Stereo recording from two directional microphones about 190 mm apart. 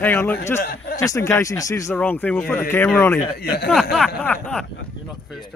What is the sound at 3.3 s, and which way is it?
Speech, 55° left (ahead or behind).